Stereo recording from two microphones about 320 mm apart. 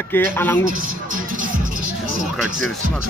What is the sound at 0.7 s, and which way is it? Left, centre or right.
Music, right.